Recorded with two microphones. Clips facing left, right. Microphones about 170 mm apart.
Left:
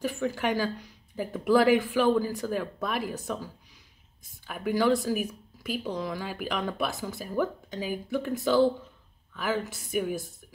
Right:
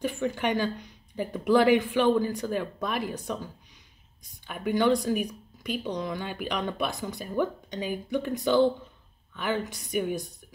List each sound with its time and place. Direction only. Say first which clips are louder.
0.0 s speech: right 1 dB; 5° left (ahead or behind)
4.2 s speech: even; 5° left (ahead or behind)